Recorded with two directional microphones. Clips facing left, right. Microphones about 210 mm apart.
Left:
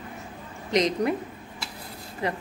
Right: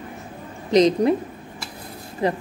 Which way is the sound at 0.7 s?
30° right (ahead or behind).